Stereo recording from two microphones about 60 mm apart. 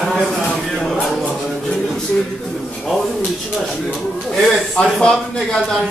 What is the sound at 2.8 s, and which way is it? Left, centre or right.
Speech, centre.